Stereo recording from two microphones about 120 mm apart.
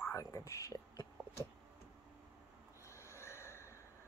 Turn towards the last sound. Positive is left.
turn(degrees=20)  # may be behind; listen again after turning